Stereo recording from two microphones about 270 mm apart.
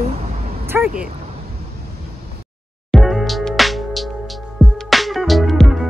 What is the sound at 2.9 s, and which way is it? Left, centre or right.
Music, centre.